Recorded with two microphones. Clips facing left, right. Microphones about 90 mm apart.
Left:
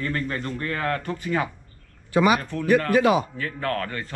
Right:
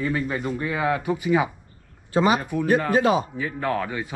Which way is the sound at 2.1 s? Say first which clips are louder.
Even; 25° right (ahead or behind).